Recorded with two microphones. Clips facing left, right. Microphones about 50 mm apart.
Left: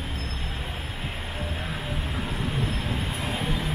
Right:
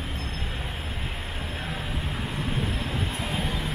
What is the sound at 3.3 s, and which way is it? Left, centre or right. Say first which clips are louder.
Music: left 2 dB; centre.